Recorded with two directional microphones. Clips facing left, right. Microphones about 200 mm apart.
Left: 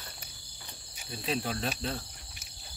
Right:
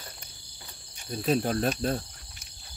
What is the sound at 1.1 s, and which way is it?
Speech, 45° right (ahead or behind).